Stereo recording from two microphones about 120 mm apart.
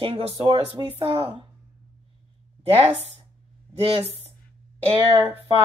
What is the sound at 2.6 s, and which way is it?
Speech, 55° right (ahead or behind).